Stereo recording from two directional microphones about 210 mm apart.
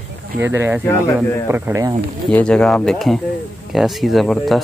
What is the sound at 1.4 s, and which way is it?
Speech, 10° right (ahead or behind).